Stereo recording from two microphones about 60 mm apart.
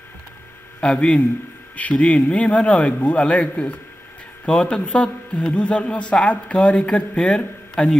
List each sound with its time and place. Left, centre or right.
0.7 s a man's voice: centre